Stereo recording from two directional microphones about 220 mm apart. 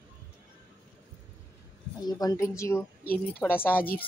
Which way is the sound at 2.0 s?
15° left (ahead or behind).